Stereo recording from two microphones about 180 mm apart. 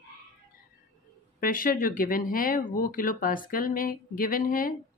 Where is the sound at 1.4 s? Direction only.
50° left (ahead or behind).